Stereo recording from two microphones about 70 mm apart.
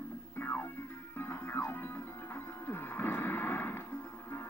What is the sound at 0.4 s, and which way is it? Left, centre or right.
Music, left.